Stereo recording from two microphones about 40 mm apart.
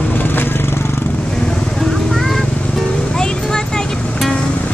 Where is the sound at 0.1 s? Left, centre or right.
Left.